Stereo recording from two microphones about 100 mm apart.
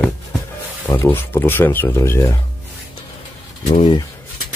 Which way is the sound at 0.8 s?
25° left (ahead or behind).